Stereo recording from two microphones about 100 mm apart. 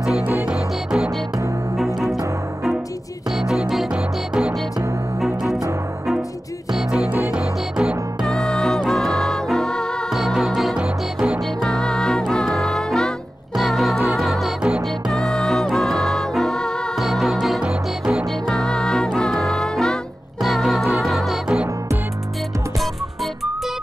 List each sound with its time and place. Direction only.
0.0 s music: 5° right (ahead or behind)
3.3 s music: 5° right (ahead or behind)
6.7 s music: 10° right (ahead or behind)
8.3 s music: 5° left (ahead or behind)
11.6 s music: 5° left (ahead or behind)
18.5 s music: 10° left (ahead or behind)